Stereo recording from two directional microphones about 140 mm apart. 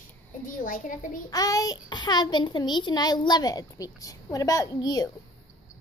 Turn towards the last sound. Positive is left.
turn(degrees=30)  # may be behind; listen again after turning